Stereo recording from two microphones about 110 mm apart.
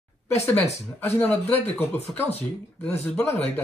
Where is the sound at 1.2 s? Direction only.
15° left (ahead or behind).